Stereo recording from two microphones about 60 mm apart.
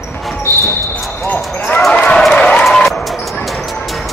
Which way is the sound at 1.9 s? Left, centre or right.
Centre.